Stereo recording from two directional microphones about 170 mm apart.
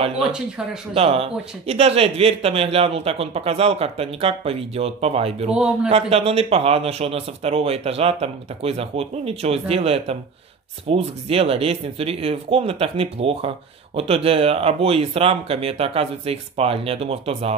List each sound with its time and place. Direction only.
0.9 s a man's voice: 35° right (ahead or behind)
5.5 s a man's voice: 5° right (ahead or behind)
5.9 s a man's voice: 35° right (ahead or behind)